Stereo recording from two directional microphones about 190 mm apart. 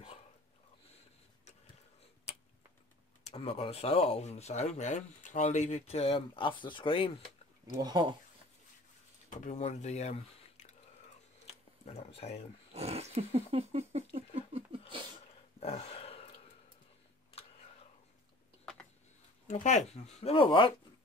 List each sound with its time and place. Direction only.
3.3 s speech: 30° left (ahead or behind)
7.7 s speech: 20° right (ahead or behind)
9.4 s speech: 40° left (ahead or behind)
11.8 s speech: 35° left (ahead or behind)
12.7 s a sound: 30° right (ahead or behind)
15.6 s a sound: 30° left (ahead or behind)
19.4 s speech: 40° left (ahead or behind)